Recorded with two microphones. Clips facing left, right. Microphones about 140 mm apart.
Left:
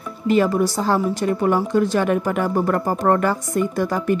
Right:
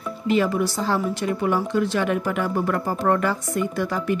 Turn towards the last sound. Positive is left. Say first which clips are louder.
# left 4 dB
turn(degrees=45)  # may be behind; listen again after turning